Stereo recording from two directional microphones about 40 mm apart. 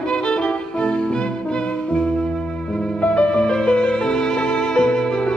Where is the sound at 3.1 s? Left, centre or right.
Left.